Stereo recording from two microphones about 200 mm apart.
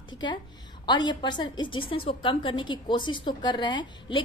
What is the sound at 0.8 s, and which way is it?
A woman's voice, 20° left (ahead or behind).